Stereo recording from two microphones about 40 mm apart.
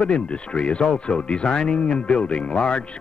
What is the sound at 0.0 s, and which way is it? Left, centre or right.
Speech, left.